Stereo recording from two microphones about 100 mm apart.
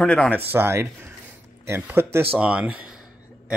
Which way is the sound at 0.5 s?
25° right (ahead or behind).